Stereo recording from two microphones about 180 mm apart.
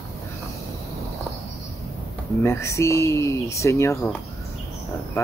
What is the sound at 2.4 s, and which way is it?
Speech, 15° left (ahead or behind).